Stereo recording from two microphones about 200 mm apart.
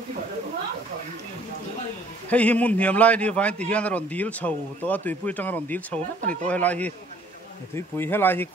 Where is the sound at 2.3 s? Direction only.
5° left (ahead or behind).